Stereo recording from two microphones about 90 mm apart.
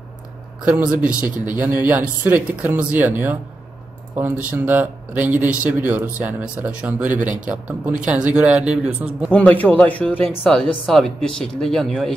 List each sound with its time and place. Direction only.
0.7 s speech: 20° right (ahead or behind)
9.3 s a man's voice: 15° left (ahead or behind)
10.9 s speech: 5° left (ahead or behind)